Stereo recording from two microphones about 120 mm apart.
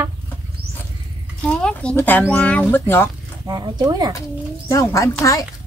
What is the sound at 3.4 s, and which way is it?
Speech, 35° right (ahead or behind).